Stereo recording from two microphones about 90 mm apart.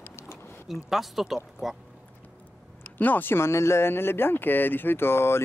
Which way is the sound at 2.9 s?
20° left (ahead or behind).